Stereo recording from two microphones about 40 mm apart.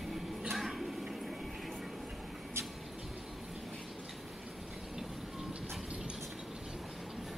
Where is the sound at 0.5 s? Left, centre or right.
Centre.